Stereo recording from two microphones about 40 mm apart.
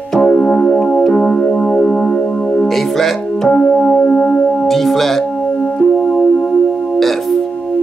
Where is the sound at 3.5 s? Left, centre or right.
Left.